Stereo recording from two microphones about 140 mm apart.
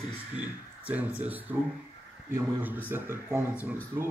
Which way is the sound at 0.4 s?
10° right (ahead or behind).